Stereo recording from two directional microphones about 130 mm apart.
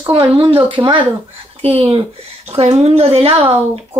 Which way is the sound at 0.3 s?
45° right (ahead or behind).